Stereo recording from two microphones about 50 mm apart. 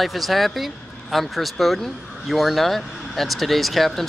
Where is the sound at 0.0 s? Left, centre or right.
Centre.